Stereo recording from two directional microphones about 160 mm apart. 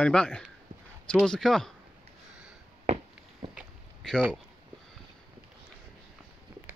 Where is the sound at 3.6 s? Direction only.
5° right (ahead or behind).